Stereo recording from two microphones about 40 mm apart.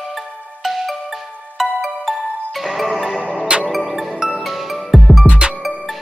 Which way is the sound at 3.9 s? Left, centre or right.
Centre.